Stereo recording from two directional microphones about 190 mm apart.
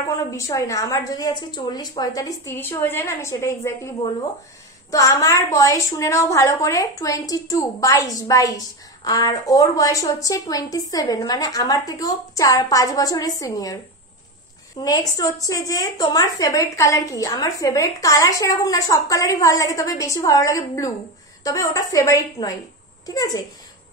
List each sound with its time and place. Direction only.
0.3 s a woman's voice: 15° left (ahead or behind)
14.8 s a woman's voice: 20° left (ahead or behind)